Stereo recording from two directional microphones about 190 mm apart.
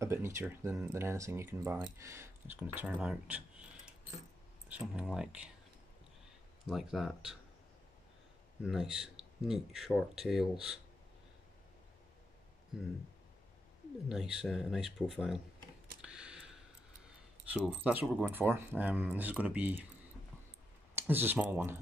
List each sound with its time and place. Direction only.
0.0 s speech: 15° right (ahead or behind)
6.7 s speech: centre (ahead or behind)
8.6 s speech: 5° right (ahead or behind)
14.0 s speech: 5° right (ahead or behind)
20.9 s speech: 10° right (ahead or behind)